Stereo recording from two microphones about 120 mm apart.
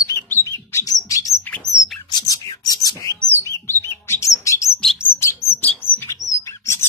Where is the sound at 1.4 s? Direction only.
10° left (ahead or behind).